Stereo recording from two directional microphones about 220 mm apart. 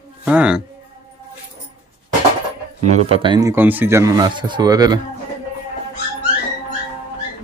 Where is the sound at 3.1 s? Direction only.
20° right (ahead or behind).